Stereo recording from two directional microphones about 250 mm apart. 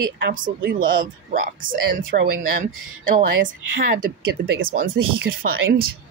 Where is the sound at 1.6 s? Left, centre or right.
Right.